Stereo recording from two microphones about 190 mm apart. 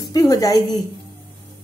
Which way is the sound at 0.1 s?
20° left (ahead or behind).